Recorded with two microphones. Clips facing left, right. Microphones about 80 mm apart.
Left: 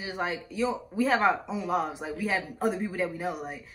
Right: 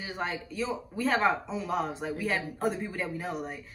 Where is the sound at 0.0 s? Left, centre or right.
Centre.